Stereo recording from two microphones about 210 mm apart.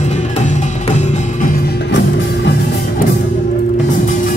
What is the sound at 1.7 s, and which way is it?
Music, 55° left (ahead or behind).